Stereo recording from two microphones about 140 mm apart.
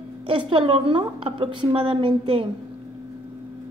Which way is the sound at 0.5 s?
40° right (ahead or behind).